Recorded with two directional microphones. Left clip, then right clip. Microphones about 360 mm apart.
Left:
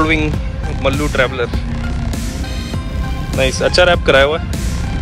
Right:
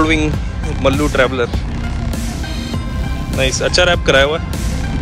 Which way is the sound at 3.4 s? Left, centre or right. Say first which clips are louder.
Left 2 dB; centre.